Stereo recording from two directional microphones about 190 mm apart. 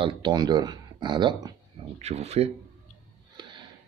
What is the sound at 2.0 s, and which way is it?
Speech, 35° right (ahead or behind).